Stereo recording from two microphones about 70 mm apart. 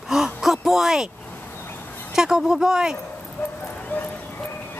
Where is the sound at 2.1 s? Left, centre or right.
Centre.